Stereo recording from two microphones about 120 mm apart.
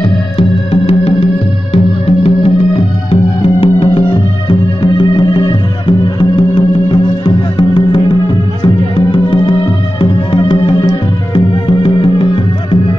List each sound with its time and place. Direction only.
0.0 s music: 55° left (ahead or behind)